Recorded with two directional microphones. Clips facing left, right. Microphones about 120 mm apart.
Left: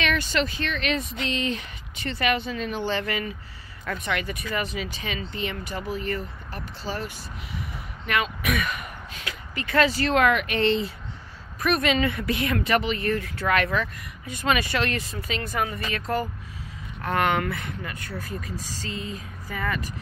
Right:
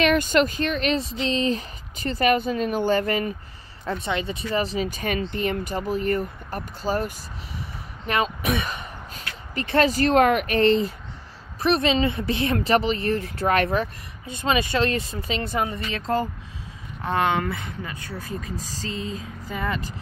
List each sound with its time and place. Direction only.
0.0 s speech: 45° right (ahead or behind)
3.8 s speech: 25° right (ahead or behind); by 7.1 s 45° right (ahead or behind)
8.1 s speech: 35° right (ahead or behind)
11.6 s speech: 30° right (ahead or behind)
14.2 s speech: 25° right (ahead or behind)